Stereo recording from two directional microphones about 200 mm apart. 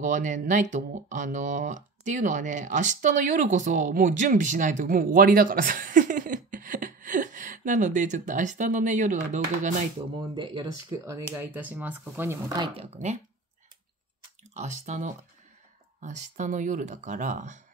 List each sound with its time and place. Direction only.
0.0 s speech: 40° right (ahead or behind)
10.3 s speech: 20° right (ahead or behind)
11.2 s speech: 10° right (ahead or behind); by 13.2 s 35° right (ahead or behind)
14.6 s speech: 35° right (ahead or behind)